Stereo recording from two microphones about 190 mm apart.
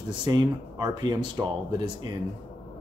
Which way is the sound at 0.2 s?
20° right (ahead or behind).